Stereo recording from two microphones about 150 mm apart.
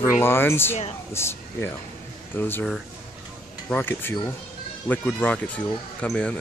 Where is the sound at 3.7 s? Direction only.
15° left (ahead or behind).